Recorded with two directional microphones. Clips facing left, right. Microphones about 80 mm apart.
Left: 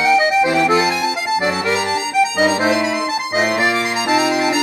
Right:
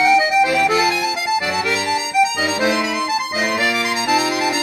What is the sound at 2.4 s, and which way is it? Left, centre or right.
Music, left.